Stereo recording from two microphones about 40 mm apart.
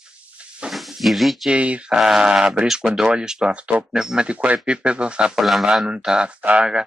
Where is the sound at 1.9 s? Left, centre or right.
Centre.